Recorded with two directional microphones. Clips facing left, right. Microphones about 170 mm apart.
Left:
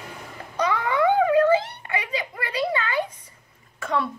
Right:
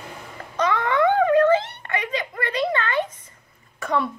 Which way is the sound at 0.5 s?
10° left (ahead or behind).